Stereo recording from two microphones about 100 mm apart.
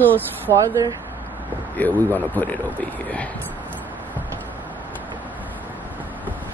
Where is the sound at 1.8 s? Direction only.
15° left (ahead or behind).